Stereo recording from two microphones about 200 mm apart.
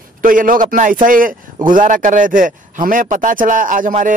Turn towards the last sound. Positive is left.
turn(degrees=-40)  # may be behind; listen again after turning